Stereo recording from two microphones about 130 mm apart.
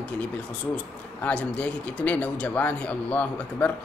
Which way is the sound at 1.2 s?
10° left (ahead or behind).